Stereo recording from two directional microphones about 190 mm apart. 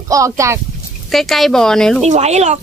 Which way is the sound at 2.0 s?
35° right (ahead or behind).